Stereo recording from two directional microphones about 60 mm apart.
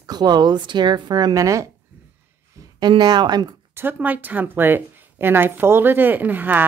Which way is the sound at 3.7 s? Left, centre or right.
Right.